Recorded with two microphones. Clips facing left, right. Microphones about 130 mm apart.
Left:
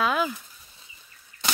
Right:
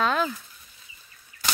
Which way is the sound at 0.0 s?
10° left (ahead or behind).